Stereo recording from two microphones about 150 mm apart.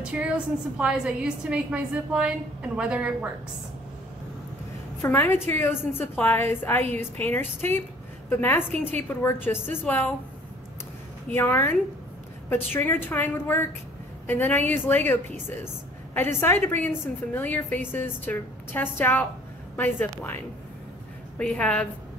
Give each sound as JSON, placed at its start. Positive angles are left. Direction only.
{"t": 0.0, "sound": "a woman's voice", "side_deg": -5}
{"t": 5.0, "sound": "a woman's voice", "side_deg": 15}
{"t": 11.2, "sound": "a woman's voice", "side_deg": 15}
{"t": 12.7, "sound": "a woman's voice", "side_deg": 15}